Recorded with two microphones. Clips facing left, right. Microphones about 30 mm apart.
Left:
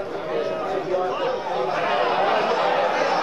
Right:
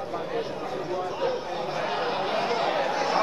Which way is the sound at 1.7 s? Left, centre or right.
Left.